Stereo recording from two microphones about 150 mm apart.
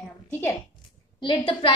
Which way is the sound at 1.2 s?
35° left (ahead or behind).